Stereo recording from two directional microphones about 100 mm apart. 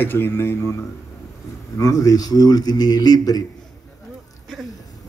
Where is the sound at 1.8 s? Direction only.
35° left (ahead or behind).